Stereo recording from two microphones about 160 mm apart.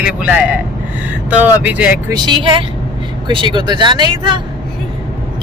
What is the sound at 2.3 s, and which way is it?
A woman's voice, 30° right (ahead or behind).